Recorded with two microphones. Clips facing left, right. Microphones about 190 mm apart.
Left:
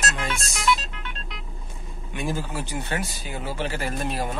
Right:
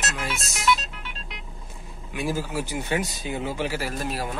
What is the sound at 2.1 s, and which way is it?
Speech, 5° right (ahead or behind).